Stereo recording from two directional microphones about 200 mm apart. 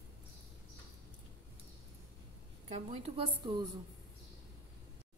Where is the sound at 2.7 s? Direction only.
30° right (ahead or behind).